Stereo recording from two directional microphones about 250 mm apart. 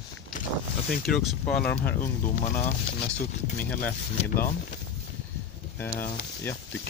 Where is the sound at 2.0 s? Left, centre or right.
Left.